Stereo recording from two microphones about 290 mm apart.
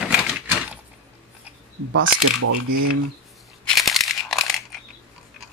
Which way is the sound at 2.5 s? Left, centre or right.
Right.